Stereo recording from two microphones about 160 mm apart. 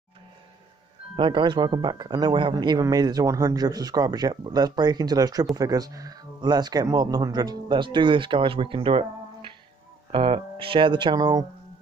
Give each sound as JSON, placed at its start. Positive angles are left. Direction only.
{"t": 1.1, "sound": "speech", "side_deg": -30}